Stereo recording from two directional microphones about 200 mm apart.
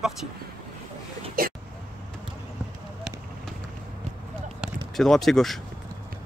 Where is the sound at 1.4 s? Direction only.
45° right (ahead or behind).